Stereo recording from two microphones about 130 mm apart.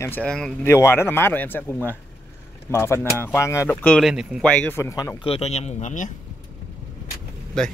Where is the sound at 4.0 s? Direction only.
5° right (ahead or behind).